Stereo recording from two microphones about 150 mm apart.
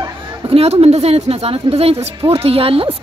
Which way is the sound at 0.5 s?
40° right (ahead or behind).